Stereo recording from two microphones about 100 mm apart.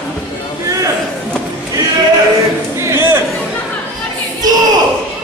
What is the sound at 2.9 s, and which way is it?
Chatter, 25° right (ahead or behind).